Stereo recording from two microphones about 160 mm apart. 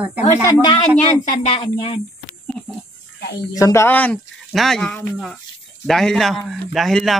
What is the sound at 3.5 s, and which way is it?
A man's voice, 20° left (ahead or behind).